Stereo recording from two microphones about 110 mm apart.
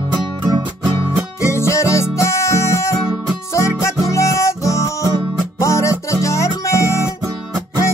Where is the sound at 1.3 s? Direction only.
25° left (ahead or behind).